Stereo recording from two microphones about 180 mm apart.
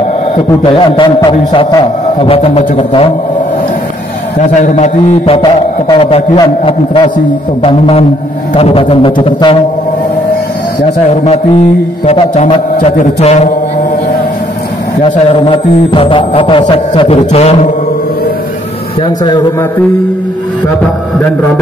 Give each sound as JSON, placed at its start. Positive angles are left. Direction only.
{"t": 0.7, "sound": "a man's voice", "side_deg": 30}
{"t": 4.4, "sound": "a man's voice", "side_deg": 40}
{"t": 11.1, "sound": "a man's voice", "side_deg": 35}
{"t": 15.0, "sound": "a man's voice", "side_deg": 35}
{"t": 19.0, "sound": "a man's voice", "side_deg": 25}